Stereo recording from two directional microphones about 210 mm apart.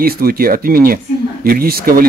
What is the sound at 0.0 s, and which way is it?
Speech, 45° right (ahead or behind).